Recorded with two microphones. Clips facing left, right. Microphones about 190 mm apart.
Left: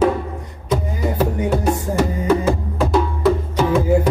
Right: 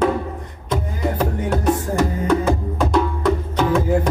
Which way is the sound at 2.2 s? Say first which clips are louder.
Left 1 dB; 5° left (ahead or behind).